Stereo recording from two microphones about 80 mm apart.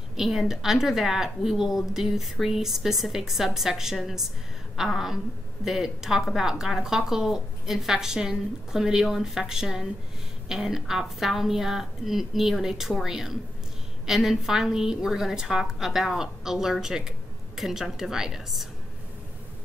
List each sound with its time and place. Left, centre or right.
0.1 s a woman's voice: centre